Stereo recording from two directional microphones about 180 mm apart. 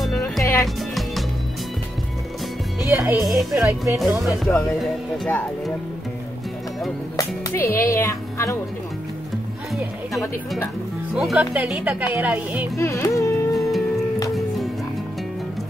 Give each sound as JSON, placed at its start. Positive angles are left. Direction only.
{"t": 0.2, "sound": "music", "side_deg": 15}
{"t": 2.9, "sound": "speech", "side_deg": -10}
{"t": 4.0, "sound": "speech", "side_deg": 0}
{"t": 4.3, "sound": "music", "side_deg": 15}
{"t": 4.7, "sound": "speech", "side_deg": 5}
{"t": 7.2, "sound": "music", "side_deg": 15}
{"t": 7.9, "sound": "speech", "side_deg": 15}
{"t": 11.1, "sound": "speech", "side_deg": -5}
{"t": 12.7, "sound": "music", "side_deg": 15}
{"t": 13.5, "sound": "music", "side_deg": 0}